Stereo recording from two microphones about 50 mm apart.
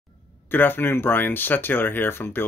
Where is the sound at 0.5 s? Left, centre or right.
Left.